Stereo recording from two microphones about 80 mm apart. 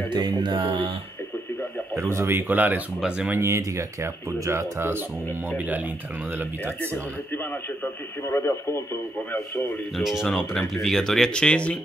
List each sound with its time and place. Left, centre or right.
0.1 s music: right
2.0 s speech: right; by 3.3 s centre
3.3 s speech: right
7.8 s speech: left
9.3 s a man's voice: left
9.9 s speech: centre